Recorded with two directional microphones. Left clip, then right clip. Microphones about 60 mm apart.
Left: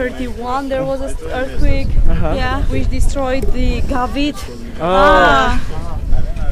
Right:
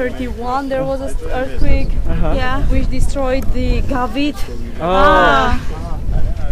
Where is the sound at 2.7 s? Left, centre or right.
Right.